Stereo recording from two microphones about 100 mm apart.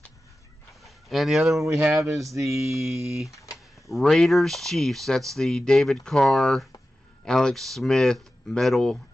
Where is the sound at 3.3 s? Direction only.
30° left (ahead or behind).